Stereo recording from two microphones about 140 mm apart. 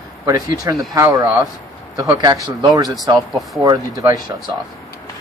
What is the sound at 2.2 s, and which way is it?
Speech, 30° right (ahead or behind).